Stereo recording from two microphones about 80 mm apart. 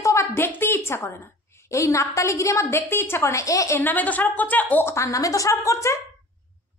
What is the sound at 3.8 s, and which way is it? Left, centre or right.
A woman's voice, left.